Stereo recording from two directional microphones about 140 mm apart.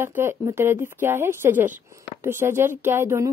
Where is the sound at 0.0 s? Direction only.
15° right (ahead or behind).